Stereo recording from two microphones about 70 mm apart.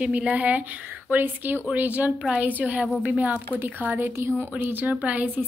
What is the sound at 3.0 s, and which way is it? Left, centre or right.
Speech, right.